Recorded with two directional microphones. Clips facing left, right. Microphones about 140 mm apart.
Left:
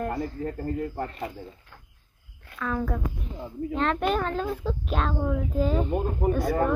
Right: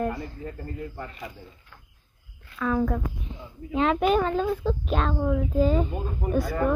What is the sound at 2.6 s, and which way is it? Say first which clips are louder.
Speech: right 4 dB; centre (ahead or behind).